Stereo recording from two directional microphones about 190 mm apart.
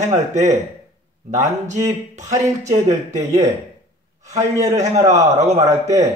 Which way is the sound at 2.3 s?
15° right (ahead or behind).